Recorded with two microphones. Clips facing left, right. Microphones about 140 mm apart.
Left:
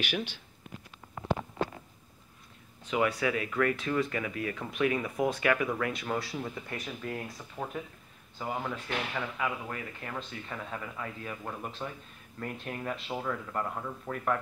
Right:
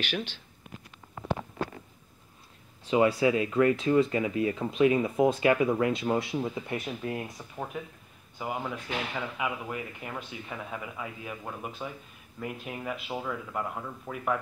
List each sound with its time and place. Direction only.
0.0 s speech: 15° left (ahead or behind)
2.8 s speech: 30° right (ahead or behind)
8.4 s speech: 10° right (ahead or behind)